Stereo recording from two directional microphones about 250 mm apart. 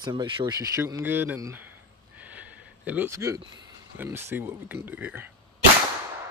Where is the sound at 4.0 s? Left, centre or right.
Centre.